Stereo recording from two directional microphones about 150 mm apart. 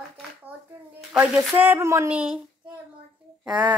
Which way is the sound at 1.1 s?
10° right (ahead or behind).